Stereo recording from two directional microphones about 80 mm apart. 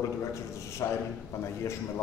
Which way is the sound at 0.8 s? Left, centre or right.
Left.